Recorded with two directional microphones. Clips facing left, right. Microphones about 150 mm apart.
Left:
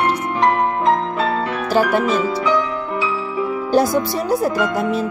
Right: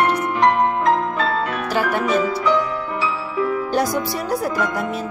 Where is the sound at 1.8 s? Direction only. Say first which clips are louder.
Left 5 dB; 35° left (ahead or behind).